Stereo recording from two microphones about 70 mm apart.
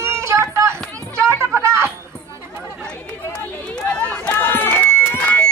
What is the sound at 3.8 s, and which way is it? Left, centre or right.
Chatter, centre.